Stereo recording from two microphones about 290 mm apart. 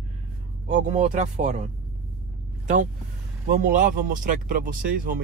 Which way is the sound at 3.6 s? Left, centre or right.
Right.